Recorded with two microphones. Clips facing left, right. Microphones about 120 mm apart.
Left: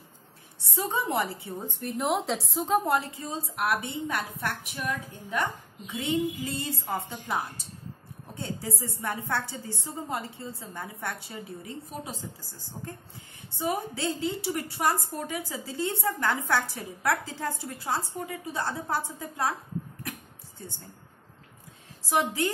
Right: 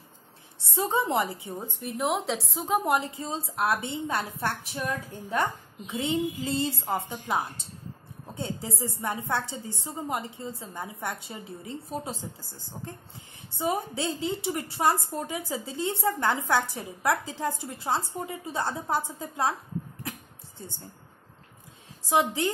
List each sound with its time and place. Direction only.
0.7 s a woman's voice: 25° right (ahead or behind)
1.8 s a woman's voice: centre (ahead or behind)
2.8 s a woman's voice: 15° right (ahead or behind)
20.0 s a sound: 25° right (ahead or behind)
22.1 s a woman's voice: 25° right (ahead or behind)